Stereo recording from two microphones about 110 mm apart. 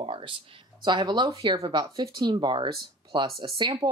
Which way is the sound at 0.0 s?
50° right (ahead or behind).